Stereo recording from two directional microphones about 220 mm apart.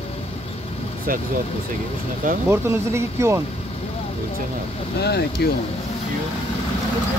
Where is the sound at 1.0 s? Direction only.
40° right (ahead or behind).